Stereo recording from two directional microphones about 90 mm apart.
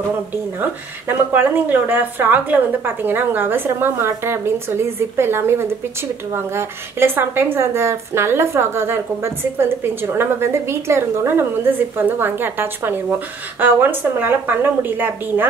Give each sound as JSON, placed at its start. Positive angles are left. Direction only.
{"t": 0.6, "sound": "a woman's voice", "side_deg": -20}